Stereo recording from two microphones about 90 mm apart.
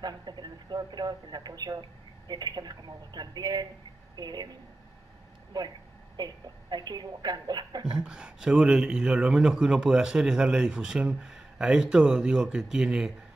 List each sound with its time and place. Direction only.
0.0 s a woman's voice: 50° right (ahead or behind)
5.5 s a woman's voice: 50° right (ahead or behind)
8.0 s a man's voice: 10° right (ahead or behind)